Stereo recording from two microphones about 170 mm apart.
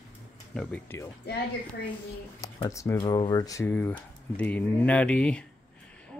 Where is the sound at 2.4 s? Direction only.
20° left (ahead or behind).